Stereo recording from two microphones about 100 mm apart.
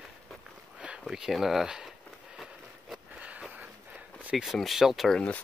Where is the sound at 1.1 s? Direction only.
5° right (ahead or behind).